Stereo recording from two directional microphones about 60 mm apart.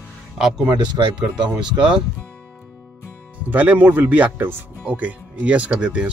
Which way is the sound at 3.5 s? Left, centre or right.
Right.